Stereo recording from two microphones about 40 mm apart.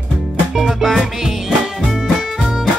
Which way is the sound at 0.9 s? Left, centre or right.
Centre.